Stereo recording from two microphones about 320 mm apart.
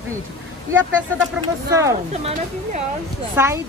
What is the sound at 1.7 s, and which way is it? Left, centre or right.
Speech, centre.